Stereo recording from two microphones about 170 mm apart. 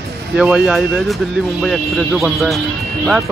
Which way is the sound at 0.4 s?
5° right (ahead or behind).